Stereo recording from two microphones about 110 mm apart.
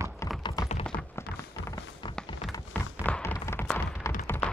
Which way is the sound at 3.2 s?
25° left (ahead or behind).